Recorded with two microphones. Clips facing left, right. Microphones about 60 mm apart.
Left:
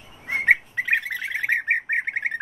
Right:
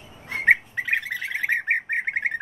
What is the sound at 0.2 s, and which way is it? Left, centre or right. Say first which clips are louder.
Bird: left 4 dB; left.